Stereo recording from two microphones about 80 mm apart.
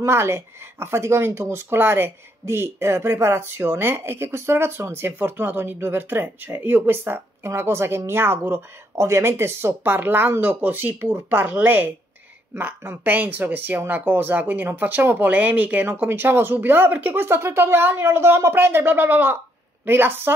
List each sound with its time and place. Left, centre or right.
0.0 s speech: right